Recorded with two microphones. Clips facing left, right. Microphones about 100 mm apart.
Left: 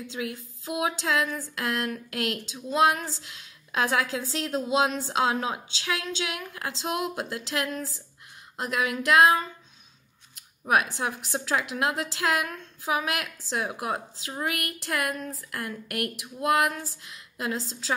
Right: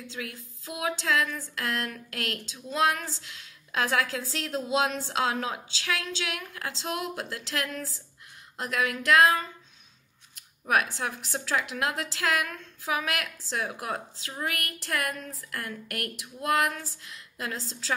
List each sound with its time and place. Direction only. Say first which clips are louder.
0.1 s a woman's voice: left 6 dB; 10° left (ahead or behind)
10.6 s a woman's voice: left 2 dB; 15° left (ahead or behind)